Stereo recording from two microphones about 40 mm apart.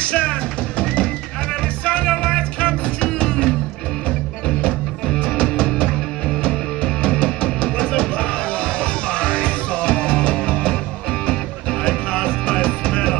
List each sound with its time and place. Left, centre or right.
0.0 s music: left
1.9 s music: left
5.0 s music: centre
11.8 s music: left